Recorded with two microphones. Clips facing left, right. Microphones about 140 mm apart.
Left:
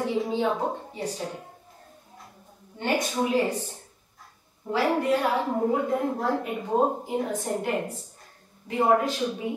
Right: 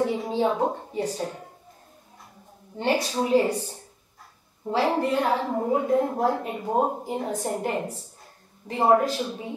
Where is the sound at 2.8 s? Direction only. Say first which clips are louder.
Right 2 dB; 30° right (ahead or behind).